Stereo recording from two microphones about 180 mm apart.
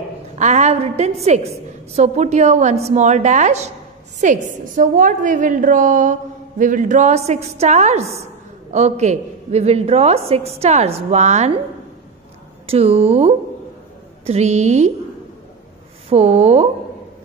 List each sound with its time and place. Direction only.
0.4 s a woman's voice: 40° right (ahead or behind)
12.6 s a woman's voice: 35° right (ahead or behind)
16.1 s a woman's voice: 35° right (ahead or behind)